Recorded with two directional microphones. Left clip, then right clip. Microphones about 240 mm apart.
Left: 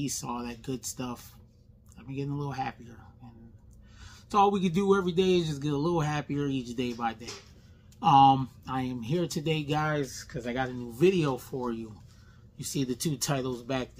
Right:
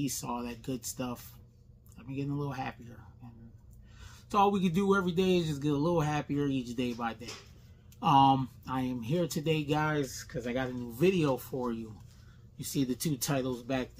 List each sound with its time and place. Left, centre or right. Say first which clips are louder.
0.0 s speech: left 1 dB; centre
4.0 s speech: left 3 dB; centre